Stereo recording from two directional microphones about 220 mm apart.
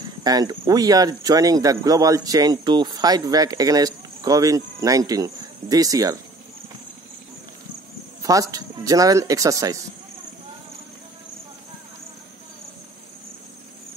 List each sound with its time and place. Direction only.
0.2 s speech: 20° right (ahead or behind)
8.2 s speech: 15° right (ahead or behind)